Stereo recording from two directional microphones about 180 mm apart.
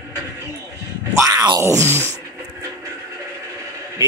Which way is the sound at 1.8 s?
10° left (ahead or behind).